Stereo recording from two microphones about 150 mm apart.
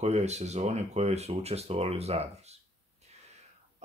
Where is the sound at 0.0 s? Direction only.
50° right (ahead or behind).